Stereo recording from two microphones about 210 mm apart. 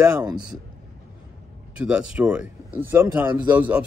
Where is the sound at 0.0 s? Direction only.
15° right (ahead or behind).